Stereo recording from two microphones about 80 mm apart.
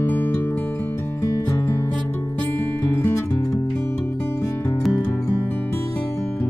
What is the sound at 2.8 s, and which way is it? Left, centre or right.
Music, left.